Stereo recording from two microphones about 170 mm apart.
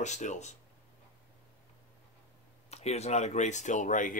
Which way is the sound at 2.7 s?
40° left (ahead or behind).